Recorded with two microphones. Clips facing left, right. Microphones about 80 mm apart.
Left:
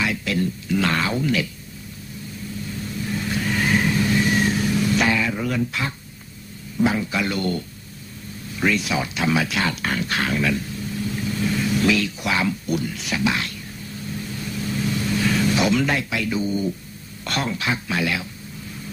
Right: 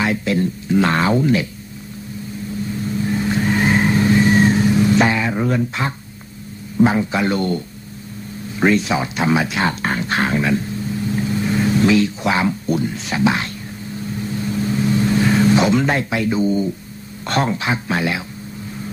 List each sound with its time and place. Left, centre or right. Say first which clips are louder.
0.0 s speech: right 5 dB; right
3.2 s vehicle: right 5 dB; right
6.8 s speech: right 5 dB; right
14.5 s vehicle: right 6 dB; right
17.3 s speech: right 5 dB; right